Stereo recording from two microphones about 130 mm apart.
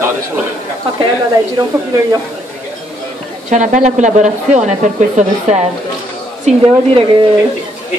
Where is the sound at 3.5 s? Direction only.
70° right (ahead or behind).